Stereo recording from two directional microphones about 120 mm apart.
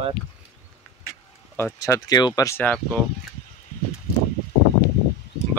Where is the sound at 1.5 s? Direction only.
20° left (ahead or behind).